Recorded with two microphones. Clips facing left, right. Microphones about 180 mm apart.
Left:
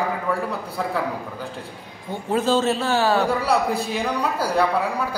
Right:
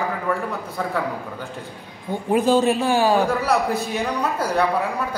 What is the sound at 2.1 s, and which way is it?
A man's voice, 15° right (ahead or behind).